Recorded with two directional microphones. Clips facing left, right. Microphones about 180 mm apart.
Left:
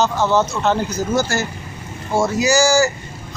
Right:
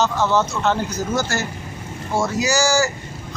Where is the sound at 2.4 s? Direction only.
10° left (ahead or behind).